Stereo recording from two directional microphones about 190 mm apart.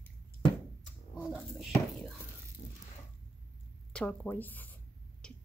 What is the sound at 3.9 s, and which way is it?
Writing, 10° left (ahead or behind).